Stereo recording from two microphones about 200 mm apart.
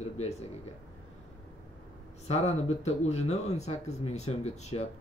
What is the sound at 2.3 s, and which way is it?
Speech, 35° left (ahead or behind).